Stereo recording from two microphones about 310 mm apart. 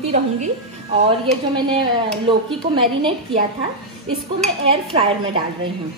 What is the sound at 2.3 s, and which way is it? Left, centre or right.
A woman's voice, centre.